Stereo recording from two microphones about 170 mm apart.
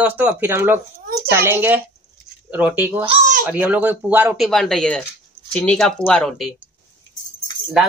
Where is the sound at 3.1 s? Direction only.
40° right (ahead or behind).